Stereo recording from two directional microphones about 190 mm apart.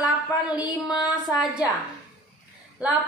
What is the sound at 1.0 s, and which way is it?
Speech, centre (ahead or behind).